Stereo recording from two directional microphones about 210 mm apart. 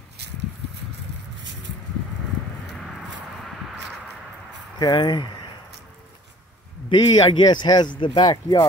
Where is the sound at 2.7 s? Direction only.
Centre (ahead or behind).